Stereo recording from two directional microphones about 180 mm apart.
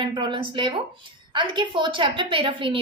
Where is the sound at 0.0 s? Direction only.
25° right (ahead or behind).